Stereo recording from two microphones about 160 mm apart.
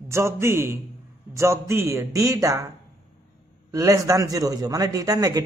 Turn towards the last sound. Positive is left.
turn(degrees=-20)  # may be behind; listen again after turning